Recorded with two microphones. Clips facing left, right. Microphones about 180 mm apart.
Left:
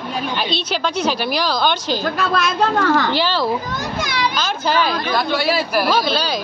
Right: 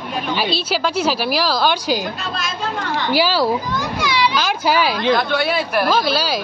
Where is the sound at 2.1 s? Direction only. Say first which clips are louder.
Left 8 dB; 65° left (ahead or behind).